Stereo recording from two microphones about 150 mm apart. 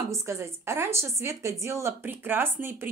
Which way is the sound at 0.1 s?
20° right (ahead or behind).